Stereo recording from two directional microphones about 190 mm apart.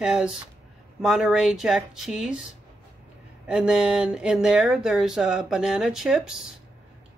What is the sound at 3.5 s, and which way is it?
Speech, 5° right (ahead or behind).